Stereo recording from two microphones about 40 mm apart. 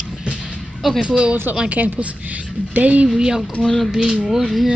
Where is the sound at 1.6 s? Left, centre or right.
Right.